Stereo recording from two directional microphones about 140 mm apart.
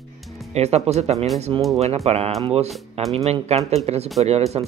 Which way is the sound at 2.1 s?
45° right (ahead or behind).